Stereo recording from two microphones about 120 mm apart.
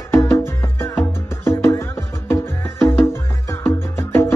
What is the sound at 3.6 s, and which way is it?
Music, 20° left (ahead or behind).